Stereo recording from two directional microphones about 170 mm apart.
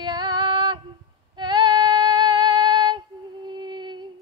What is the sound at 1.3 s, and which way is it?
Female singing, 25° right (ahead or behind).